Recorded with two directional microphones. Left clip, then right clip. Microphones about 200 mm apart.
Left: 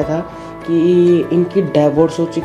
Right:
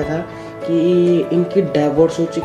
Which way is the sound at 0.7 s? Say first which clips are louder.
Left 3 dB; 20° left (ahead or behind).